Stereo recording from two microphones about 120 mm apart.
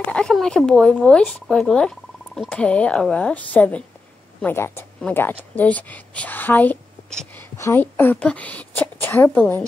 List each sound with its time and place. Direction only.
0.1 s a woman's voice: 5° left (ahead or behind)